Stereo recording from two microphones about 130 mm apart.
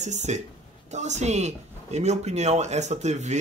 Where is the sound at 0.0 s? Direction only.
60° right (ahead or behind).